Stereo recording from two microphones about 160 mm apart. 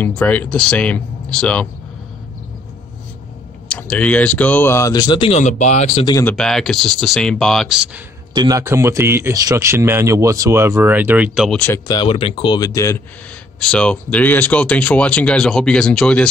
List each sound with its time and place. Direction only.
0.0 s speech: 10° left (ahead or behind)
3.6 s speech: 5° left (ahead or behind); by 5.3 s 25° left (ahead or behind)
5.3 s speech: 45° left (ahead or behind)
6.2 s speech: 5° left (ahead or behind)
8.4 s speech: 20° right (ahead or behind); by 11.6 s 5° right (ahead or behind)
11.9 s speech: 30° left (ahead or behind)
13.6 s speech: 5° left (ahead or behind)